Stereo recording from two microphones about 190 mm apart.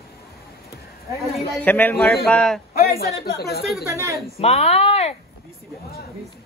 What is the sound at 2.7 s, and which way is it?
Speech, 55° left (ahead or behind).